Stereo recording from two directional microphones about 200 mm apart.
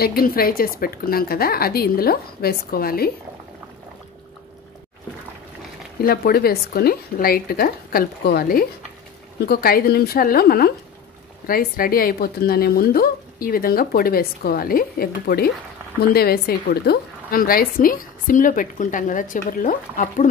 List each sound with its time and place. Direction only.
0.0 s speech: 50° left (ahead or behind)
6.0 s speech: 50° left (ahead or behind)